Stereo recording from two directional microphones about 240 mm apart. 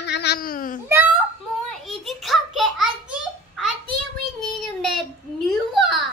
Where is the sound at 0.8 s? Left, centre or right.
Centre.